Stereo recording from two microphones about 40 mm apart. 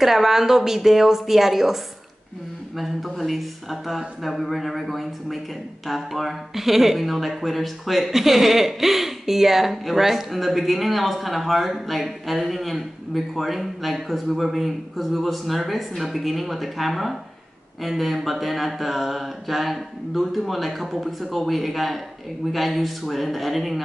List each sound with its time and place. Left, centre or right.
0.0 s speech: centre
2.8 s speech: centre